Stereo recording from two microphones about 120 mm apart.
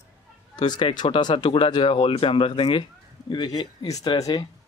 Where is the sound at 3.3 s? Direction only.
35° left (ahead or behind).